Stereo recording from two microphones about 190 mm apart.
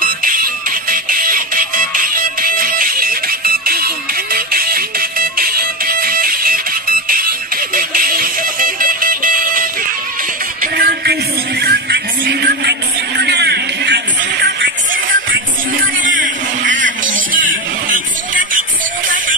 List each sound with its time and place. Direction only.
0.0 s music: 45° right (ahead or behind)
16.0 s music: 45° right (ahead or behind)